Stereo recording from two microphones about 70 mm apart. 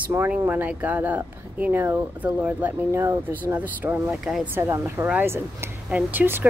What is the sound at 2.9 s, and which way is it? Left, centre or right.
Speech, right.